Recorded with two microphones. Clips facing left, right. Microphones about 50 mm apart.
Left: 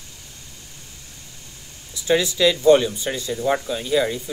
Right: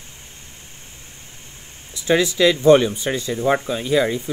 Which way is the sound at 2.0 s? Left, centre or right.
Right.